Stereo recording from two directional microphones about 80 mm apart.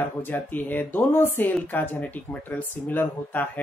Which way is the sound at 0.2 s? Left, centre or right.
Left.